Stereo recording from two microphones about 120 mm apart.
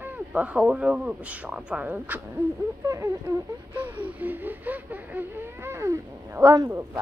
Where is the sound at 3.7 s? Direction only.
15° right (ahead or behind); by 6.7 s 30° right (ahead or behind).